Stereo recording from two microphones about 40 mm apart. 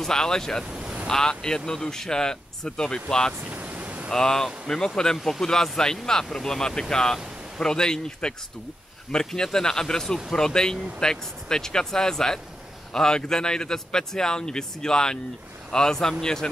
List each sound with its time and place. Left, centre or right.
0.0 s speech: centre
3.4 s vehicle: right
4.1 s a man's voice: centre